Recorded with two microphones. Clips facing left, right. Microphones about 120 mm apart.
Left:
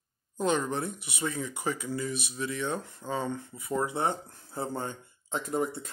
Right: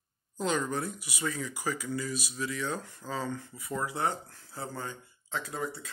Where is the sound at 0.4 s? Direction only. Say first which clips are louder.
Left 2 dB; 25° left (ahead or behind).